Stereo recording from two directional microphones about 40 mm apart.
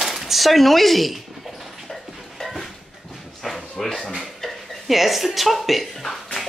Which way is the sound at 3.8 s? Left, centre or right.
Centre.